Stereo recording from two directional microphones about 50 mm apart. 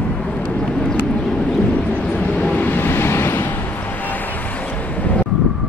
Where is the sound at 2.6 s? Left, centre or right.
Left.